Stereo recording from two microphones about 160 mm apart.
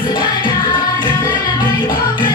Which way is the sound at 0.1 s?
30° left (ahead or behind).